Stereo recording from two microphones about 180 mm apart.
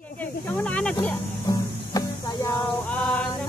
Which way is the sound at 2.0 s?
20° left (ahead or behind).